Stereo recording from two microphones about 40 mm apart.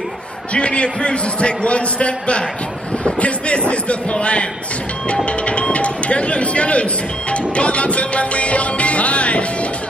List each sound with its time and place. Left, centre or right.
0.5 s a man's voice: left